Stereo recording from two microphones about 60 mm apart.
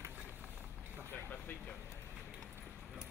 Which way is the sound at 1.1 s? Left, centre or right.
Left.